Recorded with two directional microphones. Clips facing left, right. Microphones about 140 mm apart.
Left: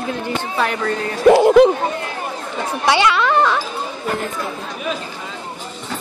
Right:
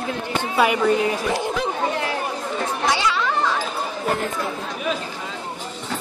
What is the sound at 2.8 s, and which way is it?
Children playing, 70° left (ahead or behind).